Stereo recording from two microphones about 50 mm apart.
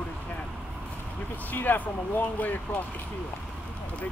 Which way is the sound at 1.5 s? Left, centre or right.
Left.